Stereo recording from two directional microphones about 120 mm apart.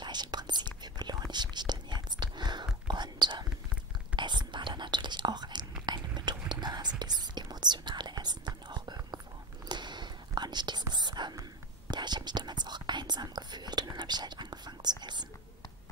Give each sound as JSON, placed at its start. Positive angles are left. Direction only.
{"t": 0.0, "sound": "whispering", "side_deg": -35}